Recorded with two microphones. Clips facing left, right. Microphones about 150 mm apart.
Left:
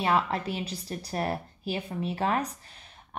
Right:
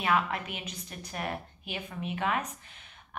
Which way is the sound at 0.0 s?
30° left (ahead or behind).